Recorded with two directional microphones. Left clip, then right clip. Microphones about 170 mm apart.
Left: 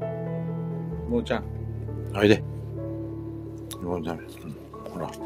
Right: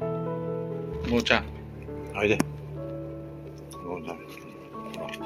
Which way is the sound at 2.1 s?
90° left.